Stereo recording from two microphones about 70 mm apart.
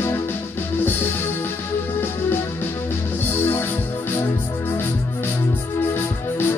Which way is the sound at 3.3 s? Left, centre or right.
Left.